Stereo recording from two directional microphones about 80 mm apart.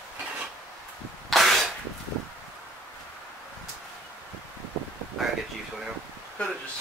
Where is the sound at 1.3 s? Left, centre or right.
Centre.